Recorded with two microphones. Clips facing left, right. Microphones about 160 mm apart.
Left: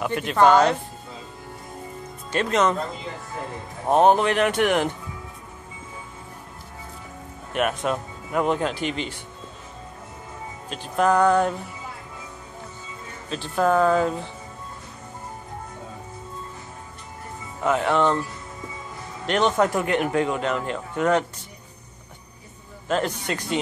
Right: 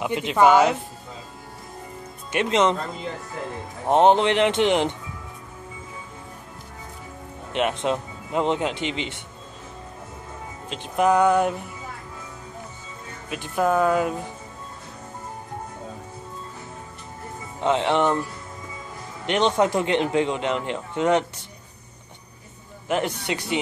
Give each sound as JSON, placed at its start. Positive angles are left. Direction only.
{"t": 0.0, "sound": "music", "side_deg": -20}
{"t": 2.3, "sound": "a man's voice", "side_deg": -20}
{"t": 3.8, "sound": "a man's voice", "side_deg": -20}
{"t": 7.5, "sound": "a man's voice", "side_deg": -20}
{"t": 10.7, "sound": "music", "side_deg": -20}
{"t": 13.3, "sound": "music", "side_deg": -15}
{"t": 17.6, "sound": "a man's voice", "side_deg": -25}
{"t": 19.2, "sound": "a man's voice", "side_deg": -20}
{"t": 22.8, "sound": "music", "side_deg": -15}